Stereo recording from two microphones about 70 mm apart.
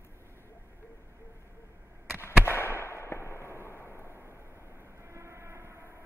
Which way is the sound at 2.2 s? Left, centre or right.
Left.